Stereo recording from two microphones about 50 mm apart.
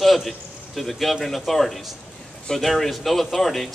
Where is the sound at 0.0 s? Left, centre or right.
Centre.